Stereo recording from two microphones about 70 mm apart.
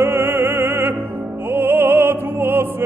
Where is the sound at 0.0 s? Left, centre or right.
Right.